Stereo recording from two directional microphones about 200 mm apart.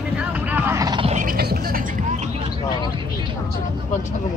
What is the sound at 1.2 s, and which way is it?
Music, 45° right (ahead or behind).